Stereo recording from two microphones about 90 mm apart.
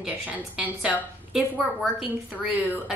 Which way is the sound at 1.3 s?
5° right (ahead or behind).